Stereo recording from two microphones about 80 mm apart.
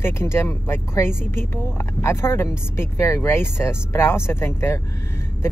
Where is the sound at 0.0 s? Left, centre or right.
Left.